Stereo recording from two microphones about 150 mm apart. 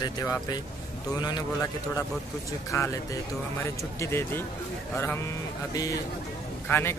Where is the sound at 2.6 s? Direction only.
20° left (ahead or behind).